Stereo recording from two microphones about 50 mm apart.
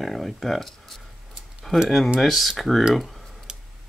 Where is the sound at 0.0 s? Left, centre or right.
Centre.